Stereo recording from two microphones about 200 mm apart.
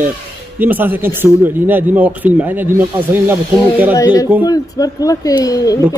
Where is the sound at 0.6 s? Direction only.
10° right (ahead or behind).